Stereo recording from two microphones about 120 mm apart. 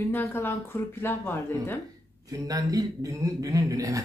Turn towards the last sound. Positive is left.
turn(degrees=-30)  # may be behind; listen again after turning